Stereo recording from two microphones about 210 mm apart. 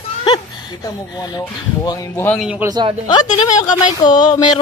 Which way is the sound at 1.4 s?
15° left (ahead or behind).